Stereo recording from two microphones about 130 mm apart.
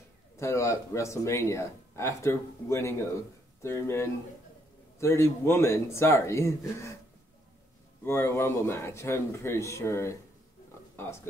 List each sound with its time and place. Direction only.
0.4 s speech: 20° left (ahead or behind)
8.0 s speech: 20° left (ahead or behind)